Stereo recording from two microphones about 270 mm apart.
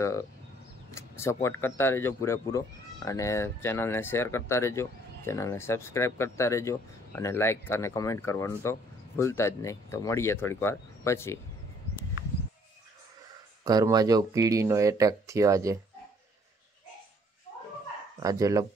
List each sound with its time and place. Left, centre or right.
0.9 s speech: centre
13.7 s speech: centre
18.2 s speech: centre